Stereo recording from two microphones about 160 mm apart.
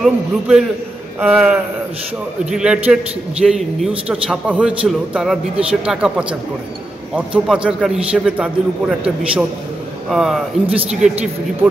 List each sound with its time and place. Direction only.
0.0 s a man's voice: 5° right (ahead or behind)